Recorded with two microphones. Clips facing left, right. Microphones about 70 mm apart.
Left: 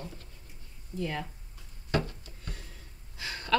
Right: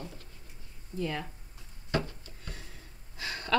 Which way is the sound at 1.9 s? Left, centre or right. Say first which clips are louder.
Left 1 dB; right.